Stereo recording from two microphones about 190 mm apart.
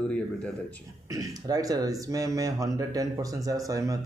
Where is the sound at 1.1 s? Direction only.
20° right (ahead or behind).